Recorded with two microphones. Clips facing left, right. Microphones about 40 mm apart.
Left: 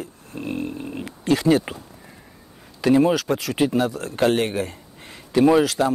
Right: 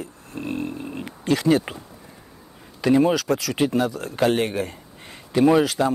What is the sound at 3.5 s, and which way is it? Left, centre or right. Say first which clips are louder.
Speech: left 3 dB; left.